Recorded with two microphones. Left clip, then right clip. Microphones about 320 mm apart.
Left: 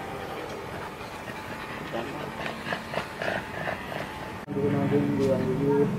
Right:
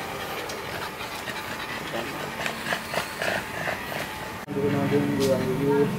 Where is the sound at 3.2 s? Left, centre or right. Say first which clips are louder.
Right 3 dB; centre.